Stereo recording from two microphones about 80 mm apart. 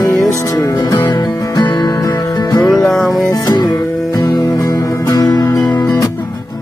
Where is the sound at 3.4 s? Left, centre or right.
Left.